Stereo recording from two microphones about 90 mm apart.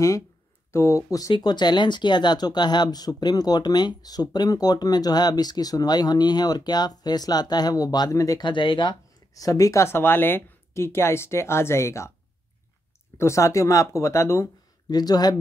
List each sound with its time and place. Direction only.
0.7 s speech: 30° left (ahead or behind)
1.3 s speech: 55° left (ahead or behind); by 8.4 s 40° left (ahead or behind)
8.4 s speech: 65° left (ahead or behind)
9.3 s speech: 40° left (ahead or behind)
13.2 s speech: 35° left (ahead or behind)
14.9 s speech: 50° left (ahead or behind)